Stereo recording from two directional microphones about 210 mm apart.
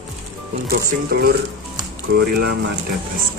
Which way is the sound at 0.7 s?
45° right (ahead or behind).